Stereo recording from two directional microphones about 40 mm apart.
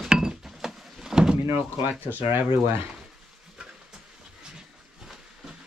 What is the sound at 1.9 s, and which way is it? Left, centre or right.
Speech, right.